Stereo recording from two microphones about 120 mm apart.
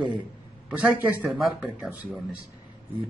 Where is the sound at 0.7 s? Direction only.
10° right (ahead or behind).